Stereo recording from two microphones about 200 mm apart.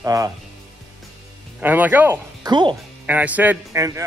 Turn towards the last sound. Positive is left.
turn(degrees=-15)  # may be behind; listen again after turning